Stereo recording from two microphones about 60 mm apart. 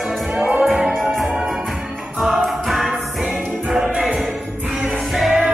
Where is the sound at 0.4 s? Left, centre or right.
Right.